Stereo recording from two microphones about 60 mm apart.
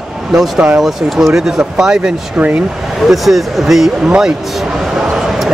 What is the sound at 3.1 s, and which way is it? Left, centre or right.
Speech, centre.